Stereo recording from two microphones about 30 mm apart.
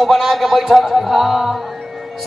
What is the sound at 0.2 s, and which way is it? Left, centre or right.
A man's voice, centre.